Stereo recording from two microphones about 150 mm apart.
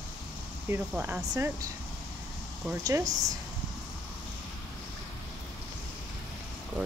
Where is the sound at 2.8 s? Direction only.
25° right (ahead or behind).